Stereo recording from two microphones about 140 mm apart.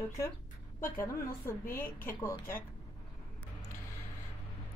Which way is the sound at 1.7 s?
15° left (ahead or behind).